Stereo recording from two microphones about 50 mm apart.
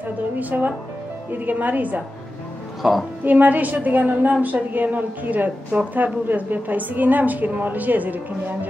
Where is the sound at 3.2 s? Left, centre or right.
Right.